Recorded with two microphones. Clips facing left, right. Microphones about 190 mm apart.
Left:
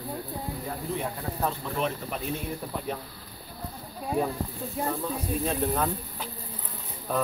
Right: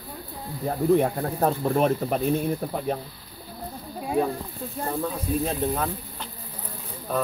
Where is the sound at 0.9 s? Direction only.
55° right (ahead or behind).